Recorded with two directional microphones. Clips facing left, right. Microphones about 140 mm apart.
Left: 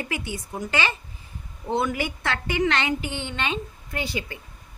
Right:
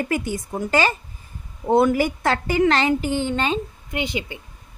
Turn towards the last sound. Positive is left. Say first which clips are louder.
# right 4 dB
turn(degrees=-20)  # may be behind; listen again after turning